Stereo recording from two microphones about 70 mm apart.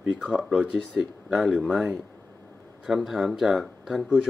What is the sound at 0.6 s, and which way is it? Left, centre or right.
Speech, centre.